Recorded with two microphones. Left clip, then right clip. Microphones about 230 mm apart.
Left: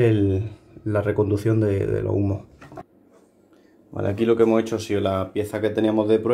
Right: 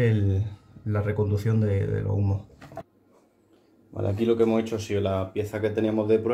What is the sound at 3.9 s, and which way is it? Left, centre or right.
Speech, centre.